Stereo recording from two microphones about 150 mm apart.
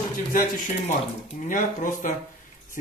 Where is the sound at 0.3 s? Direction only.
55° left (ahead or behind).